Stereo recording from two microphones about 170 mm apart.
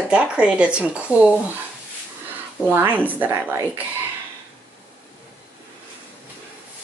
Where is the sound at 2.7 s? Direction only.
10° right (ahead or behind).